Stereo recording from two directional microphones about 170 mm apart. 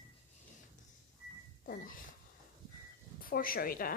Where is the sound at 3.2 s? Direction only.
55° left (ahead or behind).